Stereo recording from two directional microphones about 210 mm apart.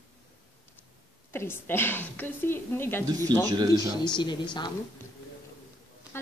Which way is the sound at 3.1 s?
20° right (ahead or behind).